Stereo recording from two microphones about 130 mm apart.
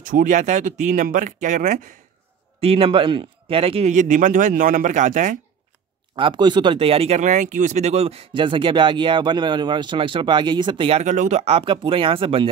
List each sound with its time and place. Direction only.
0.0 s speech: 85° right
2.6 s speech: 45° right (ahead or behind)
3.9 s speech: 75° right (ahead or behind)
6.1 s speech: 35° right (ahead or behind)
7.2 s speech: 70° right (ahead or behind); by 11.1 s 45° right (ahead or behind)
11.1 s speech: 70° right (ahead or behind); by 12.4 s 45° right (ahead or behind)